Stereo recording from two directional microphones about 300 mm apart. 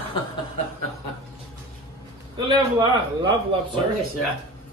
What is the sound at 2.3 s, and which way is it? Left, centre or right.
Speech, centre.